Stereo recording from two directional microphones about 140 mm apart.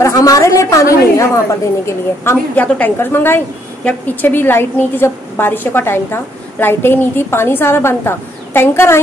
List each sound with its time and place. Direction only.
0.0 s a woman's voice: 25° left (ahead or behind)